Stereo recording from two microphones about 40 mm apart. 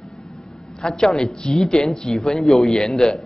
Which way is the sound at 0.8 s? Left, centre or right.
Centre.